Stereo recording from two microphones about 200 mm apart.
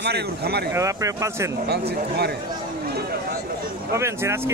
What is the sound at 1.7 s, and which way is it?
Speech, 55° right (ahead or behind).